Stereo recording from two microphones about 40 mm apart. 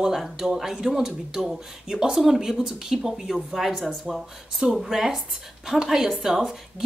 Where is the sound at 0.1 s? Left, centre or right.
Centre.